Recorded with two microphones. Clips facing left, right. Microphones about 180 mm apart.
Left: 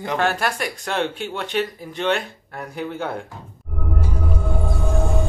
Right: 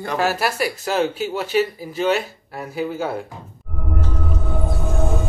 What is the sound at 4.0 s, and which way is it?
Music, 10° left (ahead or behind).